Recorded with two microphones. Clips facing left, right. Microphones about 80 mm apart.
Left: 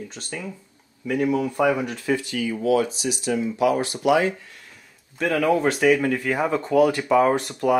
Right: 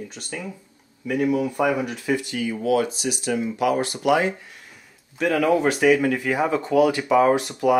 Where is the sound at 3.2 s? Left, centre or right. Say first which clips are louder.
Left 2 dB; right.